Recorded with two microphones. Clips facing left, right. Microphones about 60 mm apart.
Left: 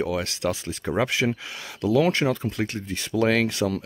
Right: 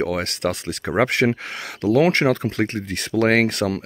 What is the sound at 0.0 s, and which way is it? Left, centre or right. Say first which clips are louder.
Speech: right 3 dB; right.